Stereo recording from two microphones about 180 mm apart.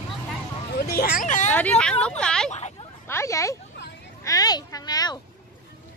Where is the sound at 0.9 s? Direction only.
55° left (ahead or behind).